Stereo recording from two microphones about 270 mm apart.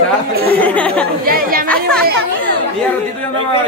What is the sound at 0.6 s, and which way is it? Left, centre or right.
Speech, centre.